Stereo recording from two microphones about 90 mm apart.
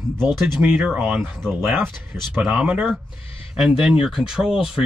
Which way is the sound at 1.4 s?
Centre (ahead or behind).